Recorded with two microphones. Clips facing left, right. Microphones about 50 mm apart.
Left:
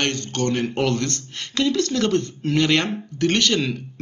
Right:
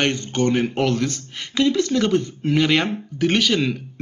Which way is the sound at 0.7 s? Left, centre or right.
Centre.